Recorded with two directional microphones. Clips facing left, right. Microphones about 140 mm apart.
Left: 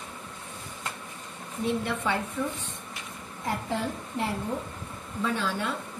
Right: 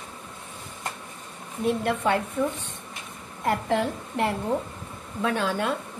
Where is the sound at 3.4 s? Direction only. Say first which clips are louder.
Right 6 dB; 65° right (ahead or behind).